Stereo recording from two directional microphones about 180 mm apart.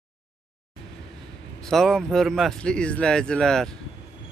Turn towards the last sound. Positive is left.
turn(degrees=5)  # may be behind; listen again after turning